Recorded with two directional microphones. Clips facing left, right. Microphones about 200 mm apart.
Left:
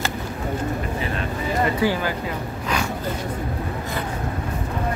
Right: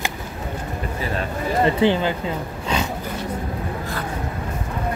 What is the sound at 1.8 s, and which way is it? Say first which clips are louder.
Speech: right 3 dB; 25° right (ahead or behind).